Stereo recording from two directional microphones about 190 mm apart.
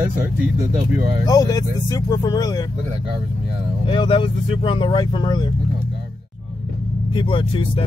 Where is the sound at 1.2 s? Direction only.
20° left (ahead or behind).